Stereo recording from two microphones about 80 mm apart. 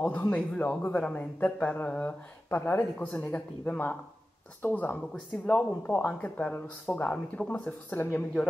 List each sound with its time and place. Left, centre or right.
0.1 s a man's voice: centre